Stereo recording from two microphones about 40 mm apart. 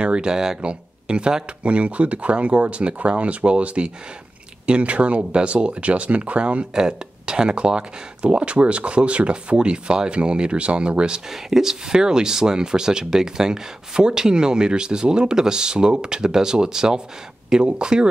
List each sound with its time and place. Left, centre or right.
0.0 s speech: right
0.6 s speech: right
6.7 s speech: centre